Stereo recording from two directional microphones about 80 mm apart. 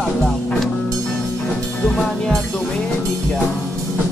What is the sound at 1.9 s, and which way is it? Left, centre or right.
Speech, centre.